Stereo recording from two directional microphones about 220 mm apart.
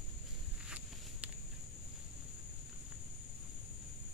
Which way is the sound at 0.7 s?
5° right (ahead or behind).